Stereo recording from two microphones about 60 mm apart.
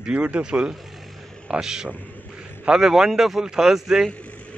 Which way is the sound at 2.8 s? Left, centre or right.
Centre.